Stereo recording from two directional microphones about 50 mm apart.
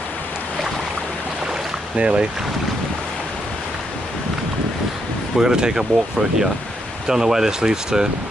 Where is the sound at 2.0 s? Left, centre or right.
Right.